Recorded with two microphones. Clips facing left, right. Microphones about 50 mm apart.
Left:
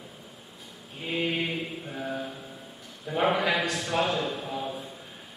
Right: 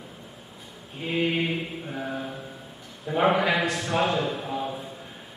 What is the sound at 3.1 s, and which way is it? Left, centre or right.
A man's voice, centre.